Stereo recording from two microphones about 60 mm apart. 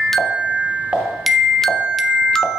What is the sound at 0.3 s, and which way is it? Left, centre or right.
Glockenspiel, centre.